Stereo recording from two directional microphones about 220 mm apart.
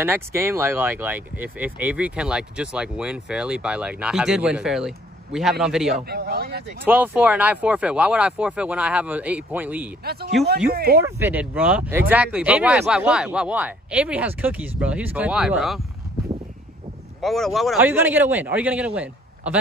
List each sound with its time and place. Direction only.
0.0 s speech: 10° right (ahead or behind)
6.0 s speech: 45° right (ahead or behind)
6.8 s speech: 10° right (ahead or behind)
10.7 s speech: 45° right (ahead or behind)
11.0 s speech: 10° right (ahead or behind)
17.2 s a man's voice: centre (ahead or behind)